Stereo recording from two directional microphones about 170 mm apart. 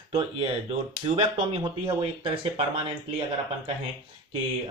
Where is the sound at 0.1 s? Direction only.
30° right (ahead or behind).